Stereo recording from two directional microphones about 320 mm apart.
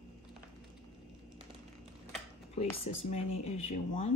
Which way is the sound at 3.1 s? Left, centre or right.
Centre.